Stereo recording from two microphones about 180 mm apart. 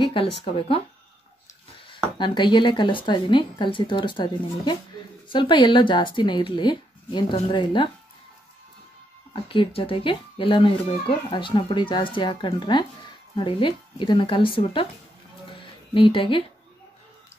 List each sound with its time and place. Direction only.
0.0 s speech: 30° left (ahead or behind)
2.1 s speech: 25° left (ahead or behind)
9.3 s speech: 30° left (ahead or behind)
15.6 s music: 30° left (ahead or behind)